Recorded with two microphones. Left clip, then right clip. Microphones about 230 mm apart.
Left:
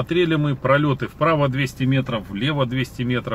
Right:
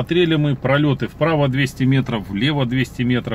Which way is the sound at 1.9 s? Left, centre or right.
Centre.